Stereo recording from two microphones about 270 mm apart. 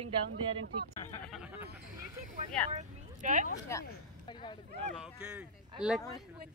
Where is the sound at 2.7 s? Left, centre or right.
Right.